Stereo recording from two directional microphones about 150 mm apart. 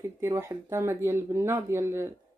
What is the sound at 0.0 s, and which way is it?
Speech, 20° right (ahead or behind).